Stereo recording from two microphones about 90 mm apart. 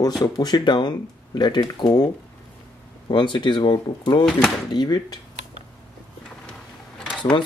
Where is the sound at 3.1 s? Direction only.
60° left (ahead or behind); by 3.7 s 75° left (ahead or behind).